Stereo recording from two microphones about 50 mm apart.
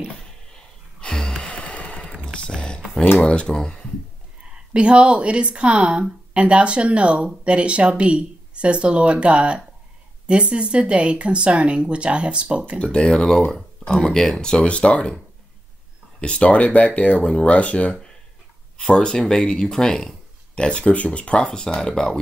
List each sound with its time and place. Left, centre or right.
1.0 s sigh: centre
2.3 s a sound: centre
3.2 s speech: left
4.7 s a woman's voice: right
12.7 s speech: centre
13.5 s speech: centre; by 15.1 s left
16.2 s speech: left
21.5 s speech: centre